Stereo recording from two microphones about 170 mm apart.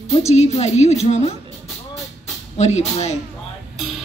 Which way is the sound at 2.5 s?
40° left (ahead or behind).